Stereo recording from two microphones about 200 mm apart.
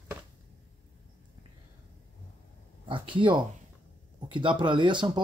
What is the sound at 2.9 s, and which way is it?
Speech, 25° right (ahead or behind).